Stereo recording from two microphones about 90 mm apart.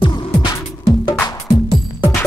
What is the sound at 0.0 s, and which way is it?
Music, 60° left (ahead or behind).